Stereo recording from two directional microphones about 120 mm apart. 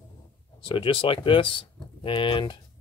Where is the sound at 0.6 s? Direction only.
45° left (ahead or behind).